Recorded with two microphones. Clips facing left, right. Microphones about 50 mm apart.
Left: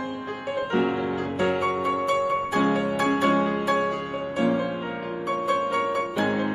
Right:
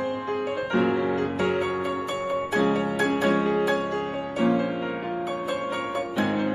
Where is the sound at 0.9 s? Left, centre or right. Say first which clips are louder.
Right 2 dB; right.